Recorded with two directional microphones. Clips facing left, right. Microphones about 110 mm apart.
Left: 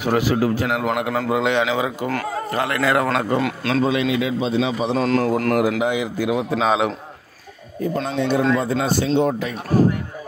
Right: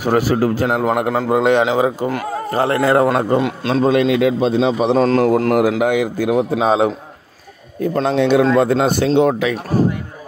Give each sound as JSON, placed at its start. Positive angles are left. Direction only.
{"t": 0.0, "sound": "a man's voice", "side_deg": -40}
{"t": 3.3, "sound": "a man's voice", "side_deg": -20}
{"t": 3.8, "sound": "a man's voice", "side_deg": -50}
{"t": 4.9, "sound": "a man's voice", "side_deg": -40}
{"t": 6.6, "sound": "a man's voice", "side_deg": -35}
{"t": 7.8, "sound": "speech", "side_deg": -65}